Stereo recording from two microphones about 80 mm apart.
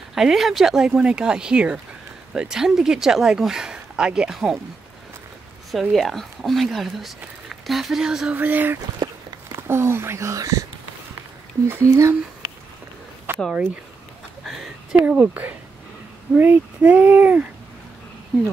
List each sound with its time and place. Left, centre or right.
0.1 s speech: centre
5.7 s speech: centre
8.4 s speech: right
11.6 s speech: right
13.3 s a sound: right
14.5 s a sound: centre
15.1 s speech: right